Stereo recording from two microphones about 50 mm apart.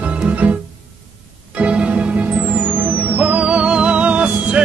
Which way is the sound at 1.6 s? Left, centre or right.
Right.